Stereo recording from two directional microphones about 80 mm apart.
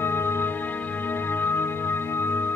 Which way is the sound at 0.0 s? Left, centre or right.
Left.